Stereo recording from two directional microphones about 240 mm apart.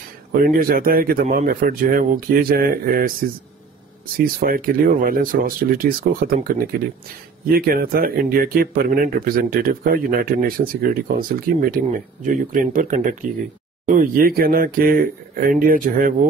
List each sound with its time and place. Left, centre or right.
0.3 s speech: right
4.4 s speech: right